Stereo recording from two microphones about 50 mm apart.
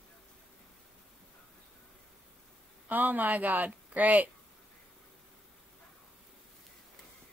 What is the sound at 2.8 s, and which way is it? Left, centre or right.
A woman's voice, right.